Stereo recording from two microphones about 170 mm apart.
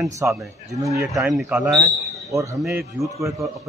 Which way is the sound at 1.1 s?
Centre (ahead or behind).